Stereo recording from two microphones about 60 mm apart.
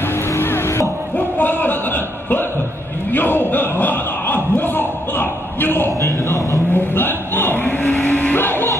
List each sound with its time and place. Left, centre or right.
0.4 s music: left
1.1 s a man's voice: left
3.1 s a sound: left
5.9 s speech: left
6.7 s vehicle: left
8.4 s music: left